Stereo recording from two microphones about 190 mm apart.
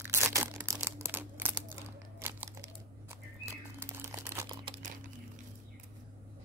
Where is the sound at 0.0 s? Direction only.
15° right (ahead or behind).